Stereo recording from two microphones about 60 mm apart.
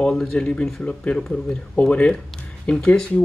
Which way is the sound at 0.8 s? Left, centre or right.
Centre.